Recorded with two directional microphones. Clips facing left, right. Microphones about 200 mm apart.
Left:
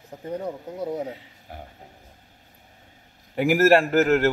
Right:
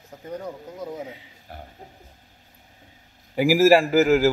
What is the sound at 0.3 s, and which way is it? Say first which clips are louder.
Speech: left 3 dB; 30° left (ahead or behind).